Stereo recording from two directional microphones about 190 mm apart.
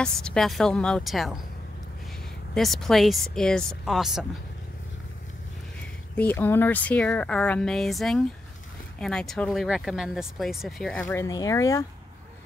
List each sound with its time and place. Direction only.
0.0 s speech: 5° left (ahead or behind)
2.5 s speech: centre (ahead or behind)
6.1 s speech: 10° left (ahead or behind)
11.2 s speech: 20° left (ahead or behind)